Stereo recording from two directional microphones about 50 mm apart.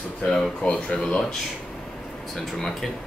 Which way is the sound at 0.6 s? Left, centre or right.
Left.